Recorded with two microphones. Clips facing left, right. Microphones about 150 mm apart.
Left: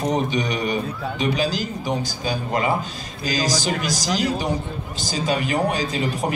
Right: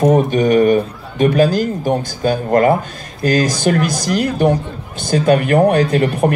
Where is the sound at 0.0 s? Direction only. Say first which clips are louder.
Right 9 dB; 50° right (ahead or behind).